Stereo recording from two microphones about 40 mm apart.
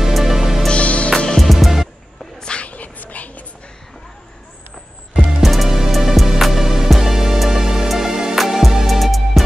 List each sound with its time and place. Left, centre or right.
0.0 s music: centre
0.7 s music: left
1.4 s music: centre
2.4 s a sound: left
2.7 s a sound: left
5.4 s music: centre